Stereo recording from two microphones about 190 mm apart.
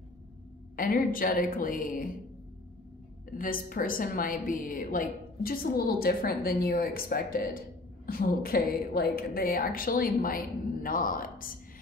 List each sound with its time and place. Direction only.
0.7 s a woman's voice: 45° left (ahead or behind)
3.3 s a woman's voice: 45° left (ahead or behind)